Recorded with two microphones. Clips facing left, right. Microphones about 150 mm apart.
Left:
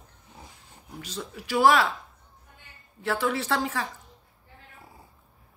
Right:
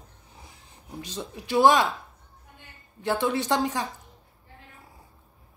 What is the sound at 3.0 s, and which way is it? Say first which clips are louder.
Speech: right 2 dB; 20° right (ahead or behind).